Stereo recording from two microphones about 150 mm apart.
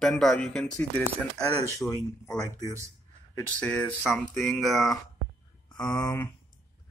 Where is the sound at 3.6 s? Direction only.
10° left (ahead or behind).